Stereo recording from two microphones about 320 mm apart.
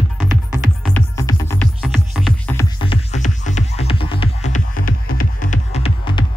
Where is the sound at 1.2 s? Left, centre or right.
Centre.